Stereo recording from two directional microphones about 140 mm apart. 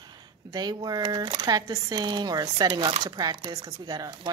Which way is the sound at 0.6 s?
30° right (ahead or behind).